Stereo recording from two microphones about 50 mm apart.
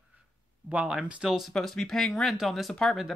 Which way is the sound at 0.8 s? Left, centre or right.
Centre.